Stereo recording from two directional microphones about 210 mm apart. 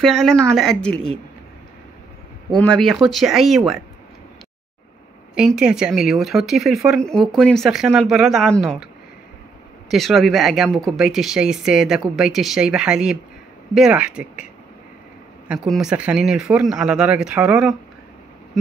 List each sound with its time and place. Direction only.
0.0 s speech: centre (ahead or behind)
2.6 s speech: centre (ahead or behind)
5.3 s speech: 5° right (ahead or behind)
9.8 s speech: centre (ahead or behind)